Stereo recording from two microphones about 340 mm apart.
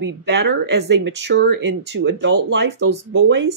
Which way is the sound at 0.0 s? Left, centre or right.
Right.